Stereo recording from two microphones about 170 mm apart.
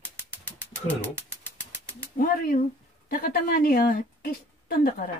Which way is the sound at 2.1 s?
55° left (ahead or behind).